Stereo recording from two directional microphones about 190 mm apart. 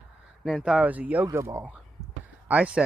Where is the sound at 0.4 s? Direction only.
Centre (ahead or behind).